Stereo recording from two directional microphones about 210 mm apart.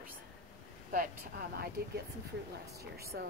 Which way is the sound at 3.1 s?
55° right (ahead or behind).